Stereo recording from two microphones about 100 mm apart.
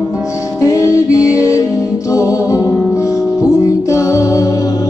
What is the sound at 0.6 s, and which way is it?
Music, 30° left (ahead or behind).